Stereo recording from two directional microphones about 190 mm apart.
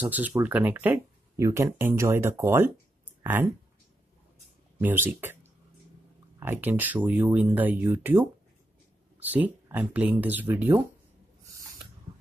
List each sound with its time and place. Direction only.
0.0 s speech: 10° right (ahead or behind)
4.7 s speech: 10° right (ahead or behind)
11.4 s snort: 15° right (ahead or behind)